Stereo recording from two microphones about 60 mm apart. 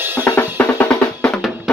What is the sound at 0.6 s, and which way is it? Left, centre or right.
Drum, left.